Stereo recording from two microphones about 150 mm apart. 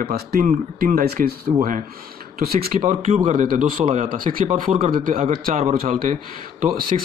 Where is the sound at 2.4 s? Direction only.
85° right.